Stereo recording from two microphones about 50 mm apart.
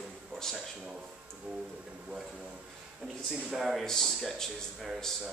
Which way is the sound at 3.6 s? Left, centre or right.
Centre.